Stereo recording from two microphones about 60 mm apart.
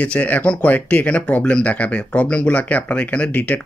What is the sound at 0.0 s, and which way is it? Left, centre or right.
Speech, left.